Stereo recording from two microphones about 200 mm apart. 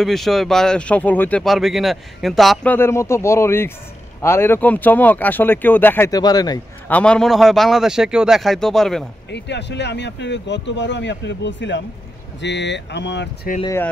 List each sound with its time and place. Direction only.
0.0 s speech: centre (ahead or behind); by 6.6 s 20° left (ahead or behind)
6.9 s speech: 5° left (ahead or behind)
9.3 s speech: 60° left (ahead or behind)